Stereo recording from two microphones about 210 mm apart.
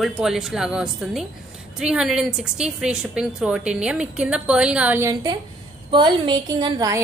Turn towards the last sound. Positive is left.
turn(degrees=-20)  # may be behind; listen again after turning